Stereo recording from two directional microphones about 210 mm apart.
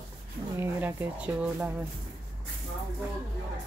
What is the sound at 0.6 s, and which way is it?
Speech, 10° right (ahead or behind).